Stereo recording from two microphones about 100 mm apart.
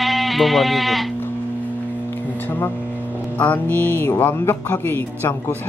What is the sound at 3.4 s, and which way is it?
Speech, 20° left (ahead or behind).